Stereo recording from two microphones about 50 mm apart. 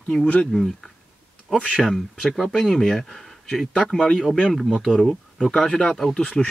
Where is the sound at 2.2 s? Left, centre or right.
Centre.